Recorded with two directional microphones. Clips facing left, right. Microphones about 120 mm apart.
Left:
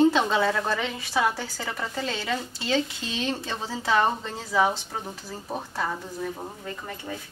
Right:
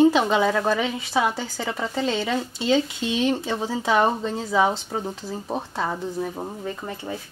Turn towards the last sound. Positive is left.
turn(degrees=-20)  # may be behind; listen again after turning